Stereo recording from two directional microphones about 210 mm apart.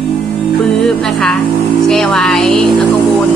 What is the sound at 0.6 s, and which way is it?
Music, 5° left (ahead or behind).